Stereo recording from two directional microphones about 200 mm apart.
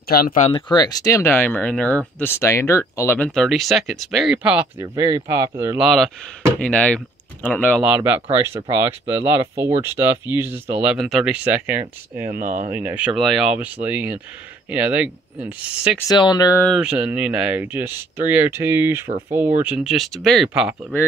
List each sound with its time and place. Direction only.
0.1 s speech: 45° left (ahead or behind)
0.5 s speech: 25° left (ahead or behind); by 5.8 s 15° right (ahead or behind)
5.8 s speech: centre (ahead or behind)
7.8 s speech: 10° right (ahead or behind)
12.4 s speech: 40° right (ahead or behind)
12.7 s speech: 10° right (ahead or behind)
16.1 s speech: 20° left (ahead or behind)
16.6 s speech: 5° right (ahead or behind)